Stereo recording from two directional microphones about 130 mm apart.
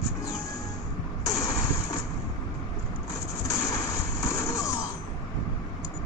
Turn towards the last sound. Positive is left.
turn(degrees=25)  # may be behind; listen again after turning